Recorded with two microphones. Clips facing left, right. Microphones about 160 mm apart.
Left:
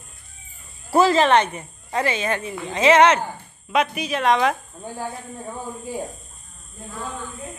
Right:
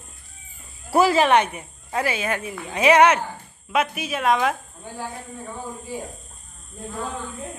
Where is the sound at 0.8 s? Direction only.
10° right (ahead or behind).